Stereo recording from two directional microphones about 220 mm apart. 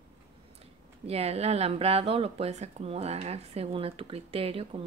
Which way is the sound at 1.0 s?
25° right (ahead or behind).